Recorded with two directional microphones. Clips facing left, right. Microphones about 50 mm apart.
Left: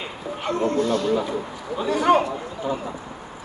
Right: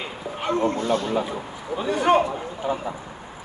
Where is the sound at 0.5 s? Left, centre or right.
Right.